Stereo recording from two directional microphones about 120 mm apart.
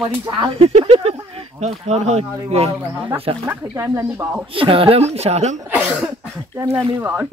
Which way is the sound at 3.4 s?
20° right (ahead or behind).